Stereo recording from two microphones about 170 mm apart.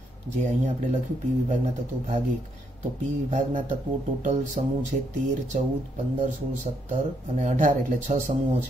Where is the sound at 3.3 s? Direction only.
45° right (ahead or behind).